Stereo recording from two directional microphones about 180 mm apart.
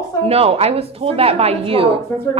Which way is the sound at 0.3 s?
35° right (ahead or behind).